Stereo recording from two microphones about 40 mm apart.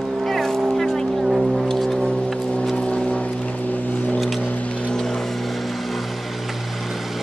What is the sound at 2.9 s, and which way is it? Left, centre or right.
Vehicle, left.